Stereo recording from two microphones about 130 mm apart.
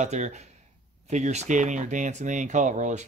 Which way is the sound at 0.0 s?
60° right (ahead or behind).